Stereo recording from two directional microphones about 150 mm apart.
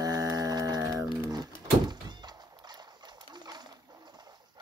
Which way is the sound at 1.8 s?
30° right (ahead or behind).